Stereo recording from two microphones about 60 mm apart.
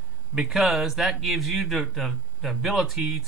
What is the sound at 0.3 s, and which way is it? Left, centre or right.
Speech, centre.